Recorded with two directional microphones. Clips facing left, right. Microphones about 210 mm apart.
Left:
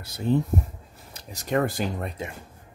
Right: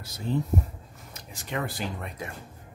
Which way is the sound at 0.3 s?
55° left (ahead or behind).